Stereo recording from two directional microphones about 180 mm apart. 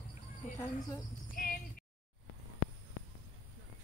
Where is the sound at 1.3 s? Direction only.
50° left (ahead or behind).